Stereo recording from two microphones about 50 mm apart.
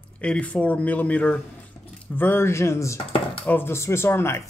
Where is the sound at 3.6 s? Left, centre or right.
Left.